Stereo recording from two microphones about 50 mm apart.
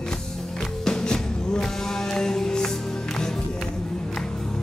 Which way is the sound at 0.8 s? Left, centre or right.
Centre.